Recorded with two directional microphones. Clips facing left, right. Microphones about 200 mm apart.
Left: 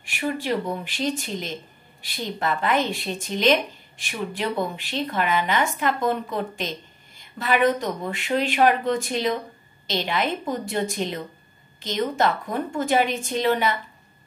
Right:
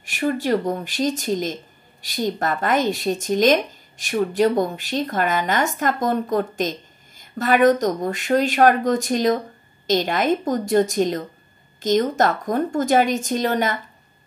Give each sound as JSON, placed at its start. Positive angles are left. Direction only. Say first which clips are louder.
{"t": 0.0, "sound": "speech", "louder": "right 5 dB", "side_deg": -45}